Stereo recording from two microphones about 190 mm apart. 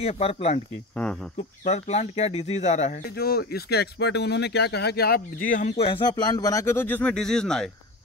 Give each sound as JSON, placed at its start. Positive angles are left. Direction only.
{"t": 0.0, "sound": "speech", "side_deg": 30}
{"t": 1.6, "sound": "speech", "side_deg": 40}
{"t": 3.2, "sound": "speech", "side_deg": 55}
{"t": 5.5, "sound": "speech", "side_deg": 40}